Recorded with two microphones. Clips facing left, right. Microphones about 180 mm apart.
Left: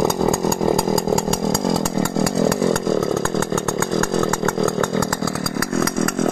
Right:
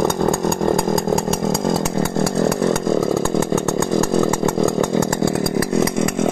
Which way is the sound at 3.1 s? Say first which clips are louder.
Right 2 dB; 15° right (ahead or behind).